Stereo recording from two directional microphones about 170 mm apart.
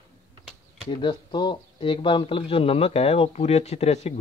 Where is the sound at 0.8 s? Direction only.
25° left (ahead or behind).